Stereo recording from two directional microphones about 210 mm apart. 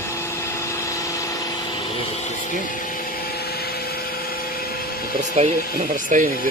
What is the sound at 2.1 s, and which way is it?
Vacuum cleaner, 35° left (ahead or behind).